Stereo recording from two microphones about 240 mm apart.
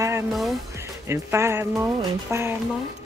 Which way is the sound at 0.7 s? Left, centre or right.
Centre.